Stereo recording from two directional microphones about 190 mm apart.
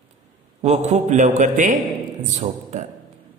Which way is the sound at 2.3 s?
35° right (ahead or behind).